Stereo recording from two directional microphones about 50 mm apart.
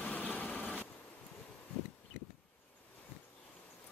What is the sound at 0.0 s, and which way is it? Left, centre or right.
Vehicle, left.